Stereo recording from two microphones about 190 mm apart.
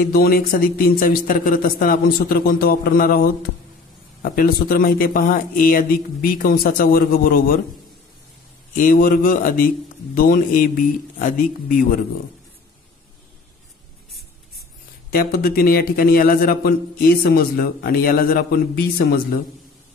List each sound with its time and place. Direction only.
0.1 s a man's voice: 55° left (ahead or behind)
8.7 s a man's voice: 45° left (ahead or behind)
15.1 s a man's voice: 50° left (ahead or behind)